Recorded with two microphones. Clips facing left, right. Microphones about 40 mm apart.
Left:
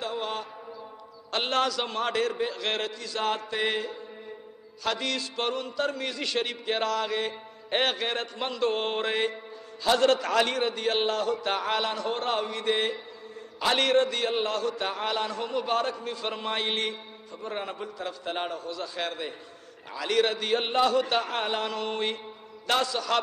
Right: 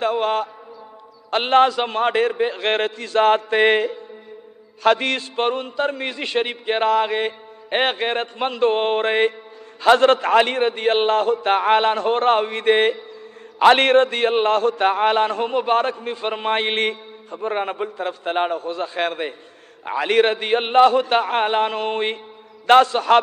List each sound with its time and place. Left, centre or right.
0.0 s mantra: right
1.3 s a man's voice: right